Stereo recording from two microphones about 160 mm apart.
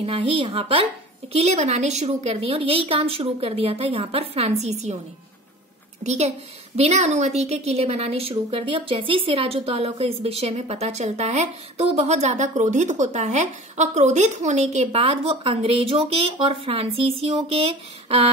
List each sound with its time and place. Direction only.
0.0 s a woman's voice: 30° right (ahead or behind)
6.0 s a woman's voice: 45° right (ahead or behind)